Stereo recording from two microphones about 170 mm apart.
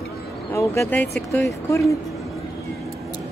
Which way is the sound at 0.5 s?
15° left (ahead or behind).